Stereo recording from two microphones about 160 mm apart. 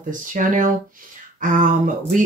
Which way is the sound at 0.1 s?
55° right (ahead or behind).